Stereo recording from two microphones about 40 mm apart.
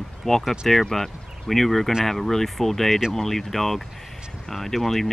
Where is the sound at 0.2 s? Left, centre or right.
Centre.